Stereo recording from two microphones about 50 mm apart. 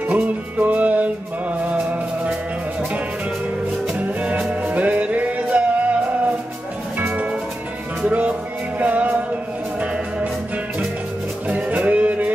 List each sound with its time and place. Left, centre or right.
0.0 s music: right
4.0 s music: right
7.0 s music: right
11.4 s music: right